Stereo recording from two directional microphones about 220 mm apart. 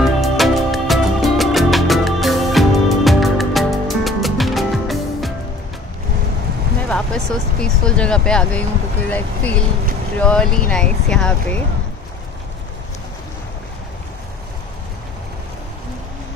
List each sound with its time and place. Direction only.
0.2 s music: centre (ahead or behind)
6.9 s speech: centre (ahead or behind)